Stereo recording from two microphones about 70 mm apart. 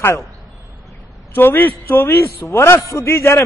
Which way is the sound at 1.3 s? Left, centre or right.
Left.